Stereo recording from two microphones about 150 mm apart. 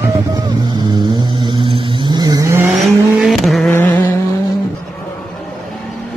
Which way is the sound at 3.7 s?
15° left (ahead or behind).